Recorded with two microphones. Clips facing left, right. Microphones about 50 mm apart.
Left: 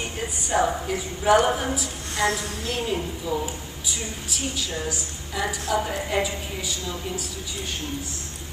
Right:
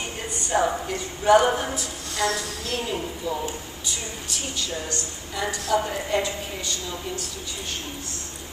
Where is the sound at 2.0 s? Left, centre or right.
Left.